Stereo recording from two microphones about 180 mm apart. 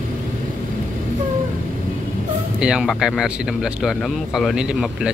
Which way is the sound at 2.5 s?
5° right (ahead or behind).